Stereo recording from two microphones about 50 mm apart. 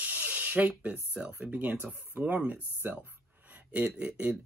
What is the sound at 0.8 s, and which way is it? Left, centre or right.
Speech, right.